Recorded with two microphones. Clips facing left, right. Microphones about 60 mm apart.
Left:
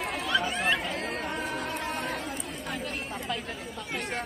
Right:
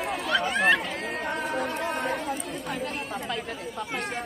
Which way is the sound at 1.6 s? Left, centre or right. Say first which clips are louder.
Right 4 dB; centre.